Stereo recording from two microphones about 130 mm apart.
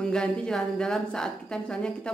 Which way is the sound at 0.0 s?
5° left (ahead or behind).